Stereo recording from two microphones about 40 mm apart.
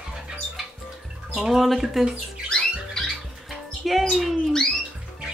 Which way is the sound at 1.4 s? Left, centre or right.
Centre.